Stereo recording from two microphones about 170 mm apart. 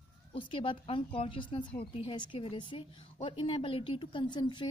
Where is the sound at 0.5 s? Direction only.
30° left (ahead or behind).